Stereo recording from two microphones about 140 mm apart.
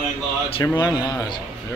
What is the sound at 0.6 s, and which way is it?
Speech, 25° left (ahead or behind).